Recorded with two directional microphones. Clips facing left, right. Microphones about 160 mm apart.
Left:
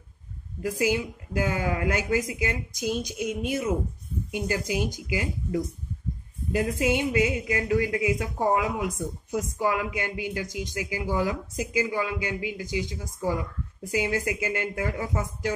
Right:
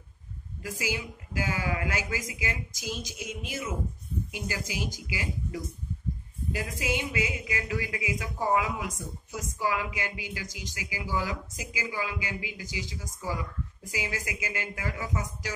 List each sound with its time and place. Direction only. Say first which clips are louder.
0.6 s speech: left 8 dB; 50° left (ahead or behind)